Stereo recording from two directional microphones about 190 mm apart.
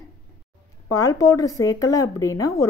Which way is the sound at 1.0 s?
15° left (ahead or behind).